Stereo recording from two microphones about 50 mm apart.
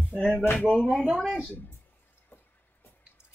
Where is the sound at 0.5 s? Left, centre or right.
Left.